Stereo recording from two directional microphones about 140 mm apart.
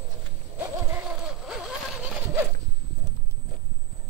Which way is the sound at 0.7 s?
20° right (ahead or behind).